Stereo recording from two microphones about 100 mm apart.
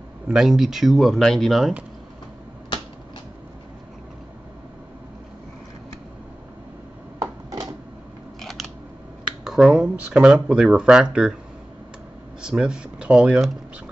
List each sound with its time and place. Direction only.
0.3 s speech: 5° right (ahead or behind)
7.2 s a sound: 35° right (ahead or behind)
8.4 s scissors: 5° left (ahead or behind)
9.4 s speech: 5° right (ahead or behind)
12.4 s speech: 10° right (ahead or behind)